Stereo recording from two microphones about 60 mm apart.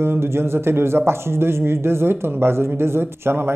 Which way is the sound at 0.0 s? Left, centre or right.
Right.